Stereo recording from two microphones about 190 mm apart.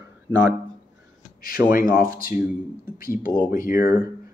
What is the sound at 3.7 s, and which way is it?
Speech, 15° right (ahead or behind).